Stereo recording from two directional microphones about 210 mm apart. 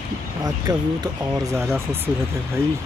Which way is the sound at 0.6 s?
15° right (ahead or behind).